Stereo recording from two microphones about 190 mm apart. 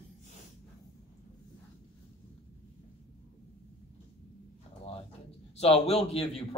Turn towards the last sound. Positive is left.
turn(degrees=30)  # may be behind; listen again after turning